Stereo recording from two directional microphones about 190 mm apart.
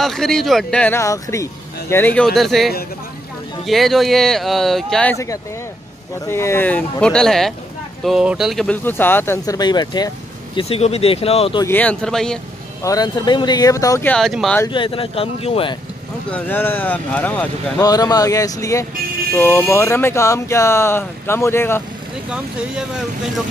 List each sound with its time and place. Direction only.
0.0 s a man's voice: centre (ahead or behind)
6.2 s speech: 15° left (ahead or behind); by 11.6 s 30° left (ahead or behind)
11.6 s a man's voice: 10° left (ahead or behind)
12.8 s speech: 20° left (ahead or behind)
14.1 s a man's voice: centre (ahead or behind)
14.7 s speech: 25° left (ahead or behind)
16.3 s speech: 10° left (ahead or behind)
17.7 s speech: 20° left (ahead or behind)